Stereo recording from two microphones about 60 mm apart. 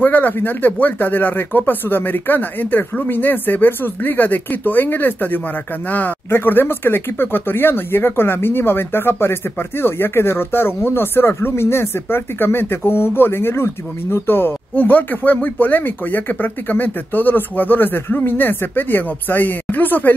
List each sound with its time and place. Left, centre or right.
0.0 s speech: left